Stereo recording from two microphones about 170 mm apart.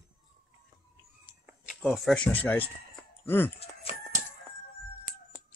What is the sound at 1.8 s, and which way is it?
Speech, centre (ahead or behind).